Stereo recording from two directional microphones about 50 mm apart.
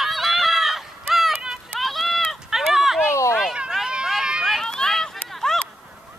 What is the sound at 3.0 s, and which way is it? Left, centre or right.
Run, left.